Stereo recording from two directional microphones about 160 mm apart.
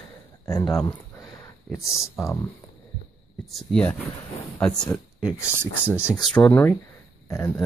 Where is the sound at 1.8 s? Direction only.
20° left (ahead or behind).